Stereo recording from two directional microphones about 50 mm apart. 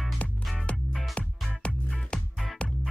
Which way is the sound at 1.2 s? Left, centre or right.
Left.